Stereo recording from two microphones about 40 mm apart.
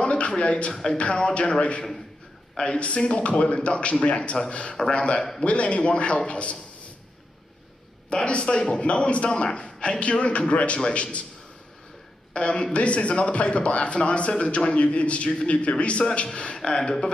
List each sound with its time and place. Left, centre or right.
0.0 s a sound: left
0.9 s a man's voice: left
8.3 s a man's voice: left
12.4 s a man's voice: left